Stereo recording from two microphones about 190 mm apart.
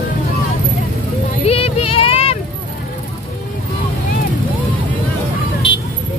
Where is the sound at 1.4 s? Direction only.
30° left (ahead or behind).